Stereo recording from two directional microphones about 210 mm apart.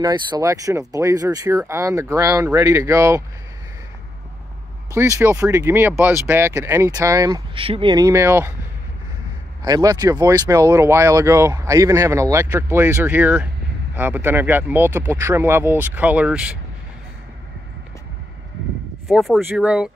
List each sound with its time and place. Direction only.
0.0 s speech: 20° right (ahead or behind)
4.9 s speech: 15° right (ahead or behind)
9.6 s speech: 15° right (ahead or behind)
19.0 s speech: centre (ahead or behind)